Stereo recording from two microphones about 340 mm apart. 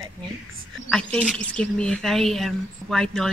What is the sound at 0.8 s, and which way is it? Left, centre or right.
Speech, centre.